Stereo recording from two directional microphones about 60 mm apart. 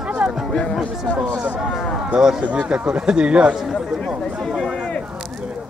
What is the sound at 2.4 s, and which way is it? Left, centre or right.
Speech, right.